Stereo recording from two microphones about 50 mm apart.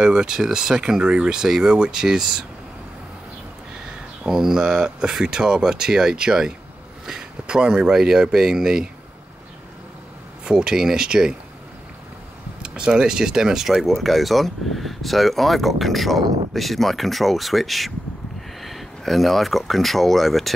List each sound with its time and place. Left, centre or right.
0.0 s speech: centre
4.2 s speech: centre
10.4 s speech: centre
12.6 s speech: centre